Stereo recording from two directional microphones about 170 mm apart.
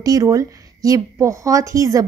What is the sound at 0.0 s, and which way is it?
Speech, 20° right (ahead or behind).